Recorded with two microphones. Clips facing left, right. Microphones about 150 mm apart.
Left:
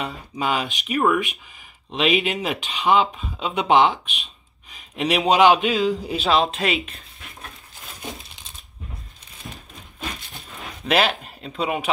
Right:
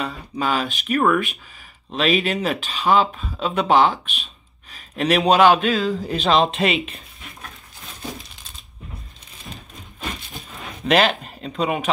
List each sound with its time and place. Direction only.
0.0 s a man's voice: 20° left (ahead or behind); by 7.0 s centre (ahead or behind)
10.9 s speech: 5° left (ahead or behind)